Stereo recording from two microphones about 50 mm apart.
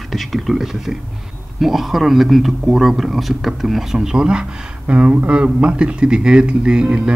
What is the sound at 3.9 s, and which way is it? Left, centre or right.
Speech, centre.